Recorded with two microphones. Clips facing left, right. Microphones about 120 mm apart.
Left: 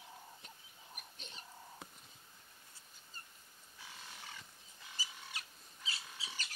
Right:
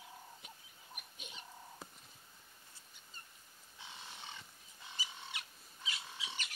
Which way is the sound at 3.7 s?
25° right (ahead or behind).